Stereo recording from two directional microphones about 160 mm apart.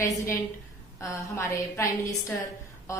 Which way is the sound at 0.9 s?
20° left (ahead or behind).